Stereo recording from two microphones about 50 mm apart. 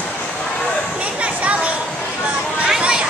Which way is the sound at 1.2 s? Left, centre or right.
Right.